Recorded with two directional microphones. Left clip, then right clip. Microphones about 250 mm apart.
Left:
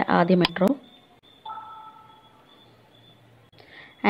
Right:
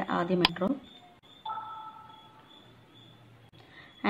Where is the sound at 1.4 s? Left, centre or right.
Centre.